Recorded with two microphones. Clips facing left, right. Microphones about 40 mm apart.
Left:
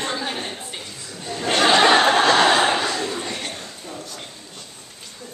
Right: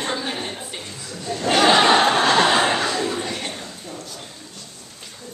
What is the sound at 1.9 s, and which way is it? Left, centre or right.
Chuckle, centre.